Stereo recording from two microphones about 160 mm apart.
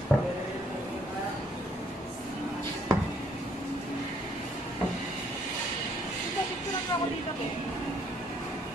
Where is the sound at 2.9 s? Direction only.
20° right (ahead or behind).